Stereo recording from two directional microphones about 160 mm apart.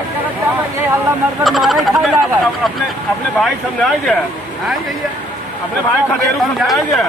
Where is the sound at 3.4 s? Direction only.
5° left (ahead or behind).